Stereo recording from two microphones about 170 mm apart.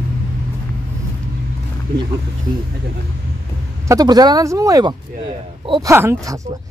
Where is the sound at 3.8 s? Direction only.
20° right (ahead or behind).